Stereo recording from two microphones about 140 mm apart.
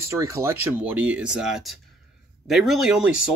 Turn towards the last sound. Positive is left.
turn(degrees=-5)  # may be behind; listen again after turning